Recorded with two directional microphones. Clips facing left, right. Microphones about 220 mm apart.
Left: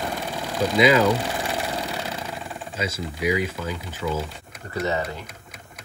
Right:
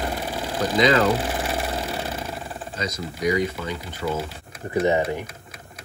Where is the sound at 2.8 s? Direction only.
5° left (ahead or behind).